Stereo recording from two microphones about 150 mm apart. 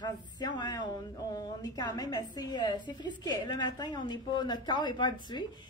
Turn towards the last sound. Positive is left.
turn(degrees=30)  # may be behind; listen again after turning